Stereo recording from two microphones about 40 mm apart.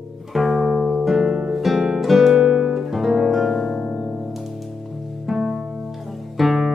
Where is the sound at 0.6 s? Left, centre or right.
Centre.